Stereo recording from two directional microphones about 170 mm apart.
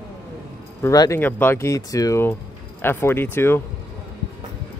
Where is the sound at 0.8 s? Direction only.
20° left (ahead or behind).